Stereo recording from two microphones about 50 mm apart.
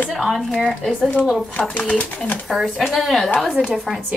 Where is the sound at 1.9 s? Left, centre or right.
Left.